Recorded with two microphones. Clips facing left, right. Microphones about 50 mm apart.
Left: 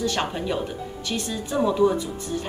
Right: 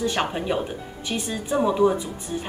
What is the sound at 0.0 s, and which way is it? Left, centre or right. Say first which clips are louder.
A woman's voice: right 1 dB; centre.